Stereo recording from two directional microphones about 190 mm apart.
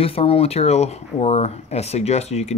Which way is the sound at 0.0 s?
30° left (ahead or behind).